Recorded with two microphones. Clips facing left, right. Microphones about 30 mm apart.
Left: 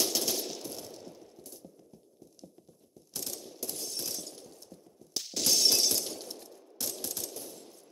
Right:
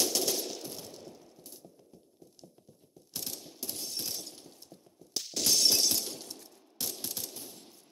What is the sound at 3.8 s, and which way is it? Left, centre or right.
Shatter, right.